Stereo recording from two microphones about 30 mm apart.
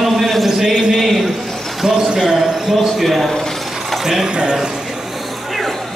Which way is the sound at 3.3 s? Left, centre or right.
Centre.